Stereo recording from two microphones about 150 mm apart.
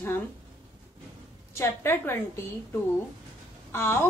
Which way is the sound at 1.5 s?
15° left (ahead or behind).